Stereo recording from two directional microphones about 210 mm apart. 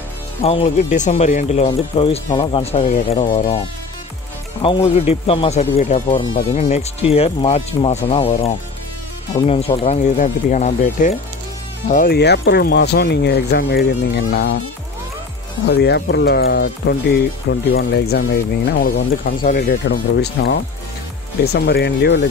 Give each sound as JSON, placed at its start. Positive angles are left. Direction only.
{"t": 0.4, "sound": "speech", "side_deg": 30}
{"t": 15.7, "sound": "speech", "side_deg": 50}